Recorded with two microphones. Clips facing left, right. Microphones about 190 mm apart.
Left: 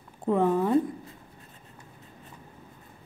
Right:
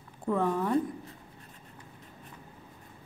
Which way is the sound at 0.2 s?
20° left (ahead or behind).